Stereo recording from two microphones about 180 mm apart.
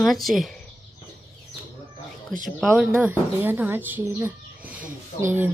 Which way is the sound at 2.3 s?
45° right (ahead or behind).